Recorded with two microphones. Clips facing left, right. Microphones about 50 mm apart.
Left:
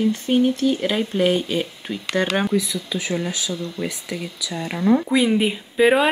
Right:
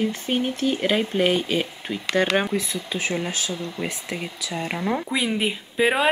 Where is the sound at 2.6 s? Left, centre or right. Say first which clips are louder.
Left 2 dB; right.